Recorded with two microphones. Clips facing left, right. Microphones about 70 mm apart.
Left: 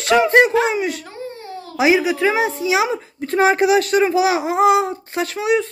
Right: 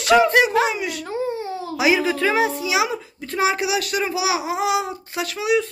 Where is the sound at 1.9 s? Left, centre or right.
Centre; by 5.7 s left.